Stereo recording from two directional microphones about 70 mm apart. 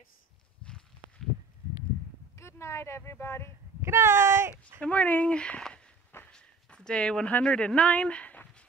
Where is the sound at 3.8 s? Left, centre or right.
Right.